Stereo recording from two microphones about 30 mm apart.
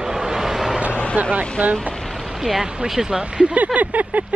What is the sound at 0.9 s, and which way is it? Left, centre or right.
Vehicle, left.